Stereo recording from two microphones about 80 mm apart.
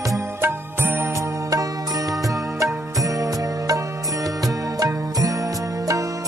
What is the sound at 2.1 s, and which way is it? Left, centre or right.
Music, right.